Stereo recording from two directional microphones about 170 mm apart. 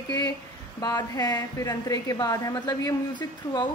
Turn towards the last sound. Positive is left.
turn(degrees=25)  # may be behind; listen again after turning